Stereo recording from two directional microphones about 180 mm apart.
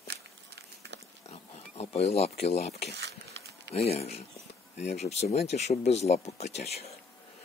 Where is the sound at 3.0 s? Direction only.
70° right (ahead or behind).